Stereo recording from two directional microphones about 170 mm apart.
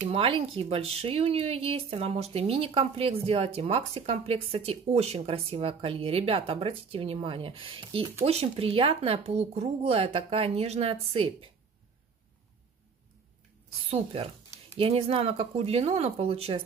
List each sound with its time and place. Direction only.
0.1 s speech: 35° right (ahead or behind)
13.8 s speech: 35° right (ahead or behind)